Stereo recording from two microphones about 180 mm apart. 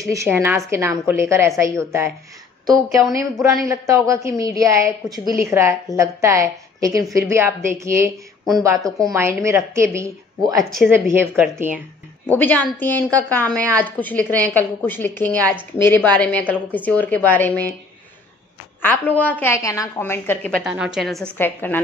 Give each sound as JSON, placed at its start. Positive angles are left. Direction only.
{"t": 0.0, "sound": "a woman's voice", "side_deg": -15}
{"t": 12.3, "sound": "a woman's voice", "side_deg": 10}
{"t": 18.8, "sound": "a woman's voice", "side_deg": 10}
{"t": 20.6, "sound": "a woman's voice", "side_deg": -5}